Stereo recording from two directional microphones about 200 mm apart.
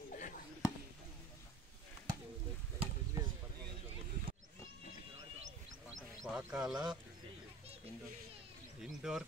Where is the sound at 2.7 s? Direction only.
20° right (ahead or behind).